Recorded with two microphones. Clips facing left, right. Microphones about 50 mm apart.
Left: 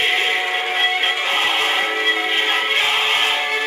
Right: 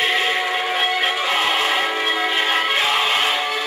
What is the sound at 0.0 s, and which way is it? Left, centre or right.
Music, left.